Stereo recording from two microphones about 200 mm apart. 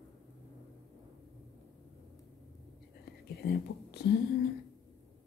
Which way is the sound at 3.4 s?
50° left (ahead or behind).